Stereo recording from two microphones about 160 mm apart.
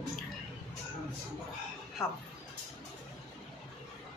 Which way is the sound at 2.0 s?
15° left (ahead or behind).